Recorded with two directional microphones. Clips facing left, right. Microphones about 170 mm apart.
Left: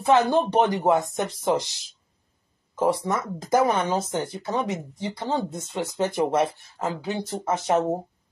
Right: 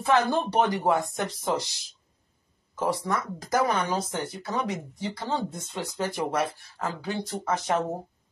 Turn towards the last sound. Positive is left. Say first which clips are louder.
# left 4 dB
turn(degrees=25)  # may be behind; listen again after turning